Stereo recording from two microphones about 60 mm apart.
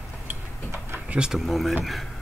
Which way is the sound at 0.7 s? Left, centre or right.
Right.